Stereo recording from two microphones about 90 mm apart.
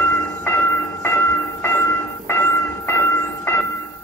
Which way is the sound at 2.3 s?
25° left (ahead or behind).